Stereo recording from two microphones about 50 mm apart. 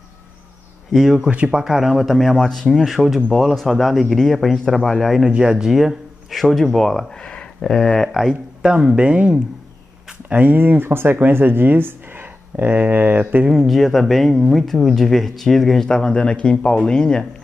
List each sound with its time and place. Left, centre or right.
0.9 s speech: centre
1.3 s speech: right
1.6 s speech: centre
5.3 s speech: centre
8.6 s speech: centre
10.3 s speech: right
13.5 s speech: centre
15.9 s speech: centre